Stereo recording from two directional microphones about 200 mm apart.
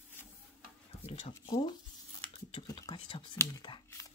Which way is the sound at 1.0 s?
30° left (ahead or behind).